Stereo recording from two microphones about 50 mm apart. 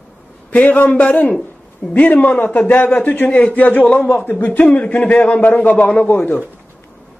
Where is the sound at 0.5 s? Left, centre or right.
Left.